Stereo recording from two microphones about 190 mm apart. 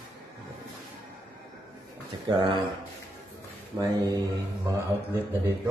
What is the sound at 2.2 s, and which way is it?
Speech, 25° right (ahead or behind).